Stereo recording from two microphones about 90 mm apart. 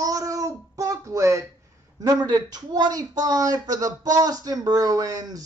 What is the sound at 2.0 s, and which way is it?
Speech, 45° right (ahead or behind).